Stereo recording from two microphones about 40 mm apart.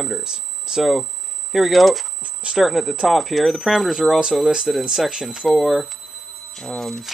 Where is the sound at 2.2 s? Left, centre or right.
Right.